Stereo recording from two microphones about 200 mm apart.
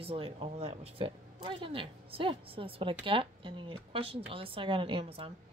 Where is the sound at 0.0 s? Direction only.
30° right (ahead or behind).